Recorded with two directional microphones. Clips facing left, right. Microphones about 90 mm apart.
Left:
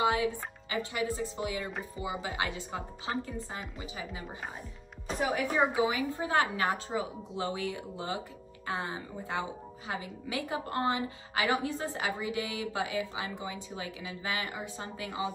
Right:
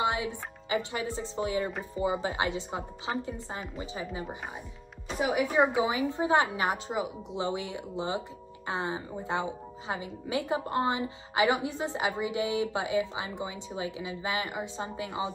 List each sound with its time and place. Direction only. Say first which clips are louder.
0.0 s music: left 1 dB; 25° right (ahead or behind)
2.0 s speech: right 7 dB; 35° right (ahead or behind)
2.4 s speech: right 4 dB; 20° right (ahead or behind)
3.1 s speech: right 1 dB; 10° right (ahead or behind)
3.8 s speech: right 4 dB; 30° right (ahead or behind)
5.2 s speech: right 3 dB; 10° right (ahead or behind)
5.9 s speech: right 4 dB; 20° right (ahead or behind)